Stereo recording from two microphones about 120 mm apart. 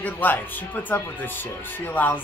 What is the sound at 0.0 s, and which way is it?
Speech, 15° left (ahead or behind).